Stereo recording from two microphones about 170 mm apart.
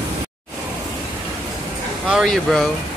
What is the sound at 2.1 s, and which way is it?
Speech, centre (ahead or behind).